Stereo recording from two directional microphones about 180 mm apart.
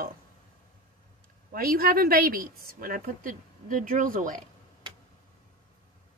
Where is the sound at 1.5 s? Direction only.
55° right (ahead or behind).